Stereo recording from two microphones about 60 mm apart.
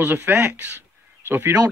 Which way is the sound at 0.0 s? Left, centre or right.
Right.